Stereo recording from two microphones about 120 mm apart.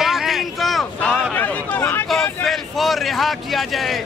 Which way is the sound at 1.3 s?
15° left (ahead or behind).